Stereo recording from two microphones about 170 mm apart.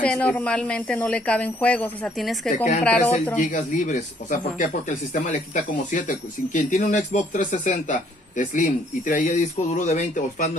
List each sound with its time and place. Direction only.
0.0 s speech: 5° left (ahead or behind)
2.5 s speech: 50° left (ahead or behind)
2.8 s speech: 10° left (ahead or behind)
3.3 s speech: 50° left (ahead or behind)